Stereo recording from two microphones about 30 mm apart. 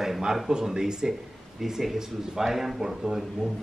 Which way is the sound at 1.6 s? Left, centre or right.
Centre.